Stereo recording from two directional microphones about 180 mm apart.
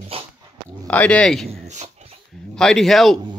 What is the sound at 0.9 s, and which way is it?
Speech, 5° left (ahead or behind).